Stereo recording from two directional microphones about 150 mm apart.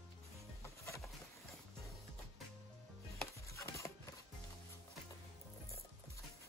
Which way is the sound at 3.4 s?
20° left (ahead or behind).